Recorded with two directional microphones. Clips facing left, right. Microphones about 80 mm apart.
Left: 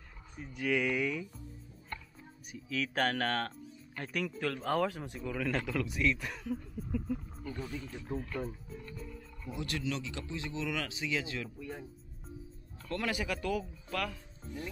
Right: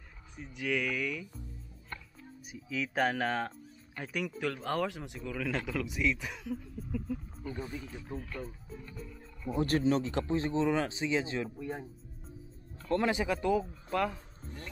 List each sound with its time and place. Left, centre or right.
0.5 s speech: centre
2.5 s speech: centre
7.4 s speech: centre
7.8 s speech: centre
9.5 s speech: right
12.9 s speech: right
14.5 s speech: right